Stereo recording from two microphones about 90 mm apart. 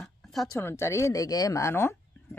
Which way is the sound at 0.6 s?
30° left (ahead or behind).